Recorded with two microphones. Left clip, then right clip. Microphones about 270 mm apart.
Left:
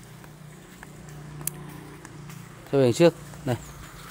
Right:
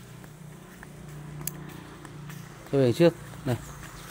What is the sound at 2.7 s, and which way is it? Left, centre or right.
Speech, centre.